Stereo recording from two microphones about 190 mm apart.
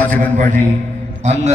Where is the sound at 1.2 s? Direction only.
35° right (ahead or behind).